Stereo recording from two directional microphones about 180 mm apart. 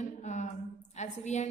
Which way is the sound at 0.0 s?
40° left (ahead or behind).